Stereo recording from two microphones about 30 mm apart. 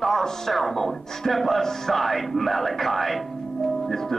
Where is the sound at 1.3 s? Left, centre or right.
Centre.